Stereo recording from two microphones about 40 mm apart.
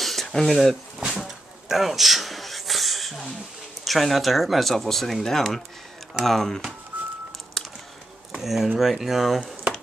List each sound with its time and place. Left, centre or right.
0.0 s a sound: centre
0.3 s speech: centre
1.7 s a sound: centre
3.8 s speech: centre
6.9 s telephone dialing: right
8.4 s speech: centre